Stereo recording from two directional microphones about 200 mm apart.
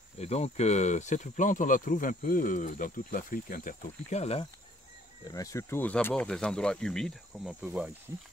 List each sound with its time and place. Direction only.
0.2 s speech: 35° left (ahead or behind)
5.2 s speech: 15° left (ahead or behind); by 7.9 s 5° right (ahead or behind)